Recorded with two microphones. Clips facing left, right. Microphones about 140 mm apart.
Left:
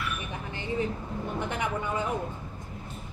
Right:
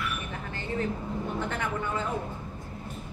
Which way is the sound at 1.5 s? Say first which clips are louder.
Left 1 dB; 15° left (ahead or behind).